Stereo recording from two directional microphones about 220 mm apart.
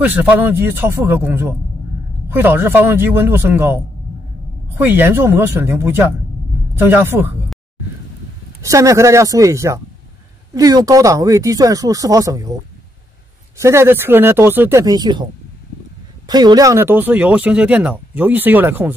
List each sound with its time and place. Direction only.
0.0 s speech: 5° right (ahead or behind)
4.8 s speech: 10° right (ahead or behind)
8.6 s speech: 15° right (ahead or behind)
13.6 s speech: 10° right (ahead or behind)
16.3 s speech: 20° right (ahead or behind)